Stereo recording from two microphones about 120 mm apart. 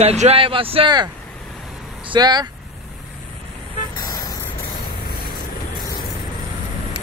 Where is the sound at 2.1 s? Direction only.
35° right (ahead or behind).